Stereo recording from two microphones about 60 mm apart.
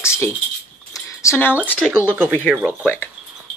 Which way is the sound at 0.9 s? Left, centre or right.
Left.